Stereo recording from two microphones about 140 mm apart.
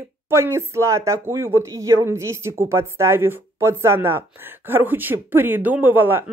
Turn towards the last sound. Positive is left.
turn(degrees=-15)  # may be behind; listen again after turning